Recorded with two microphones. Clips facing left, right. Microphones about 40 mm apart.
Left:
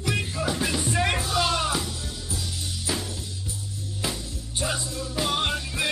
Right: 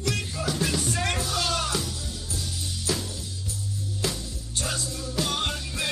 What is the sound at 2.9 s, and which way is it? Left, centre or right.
Music, centre.